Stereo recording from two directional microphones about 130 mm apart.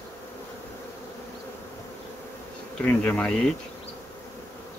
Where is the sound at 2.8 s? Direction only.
10° left (ahead or behind).